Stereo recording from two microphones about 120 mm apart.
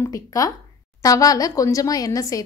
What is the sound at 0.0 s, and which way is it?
A woman's voice, 30° left (ahead or behind).